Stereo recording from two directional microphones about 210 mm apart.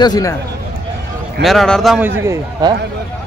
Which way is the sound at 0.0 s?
15° left (ahead or behind).